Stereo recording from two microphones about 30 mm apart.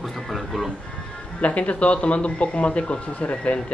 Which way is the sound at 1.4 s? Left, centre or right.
Left.